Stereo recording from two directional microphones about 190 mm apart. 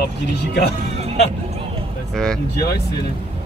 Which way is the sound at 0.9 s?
35° right (ahead or behind).